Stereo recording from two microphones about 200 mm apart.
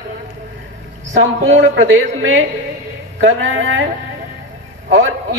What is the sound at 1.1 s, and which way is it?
A man's voice, 70° right (ahead or behind).